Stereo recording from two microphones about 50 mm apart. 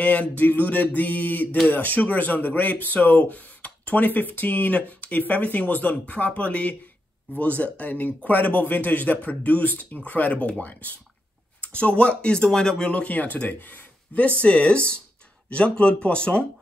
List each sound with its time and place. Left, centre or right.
0.0 s a sound: left
0.4 s speech: left
14.4 s speech: left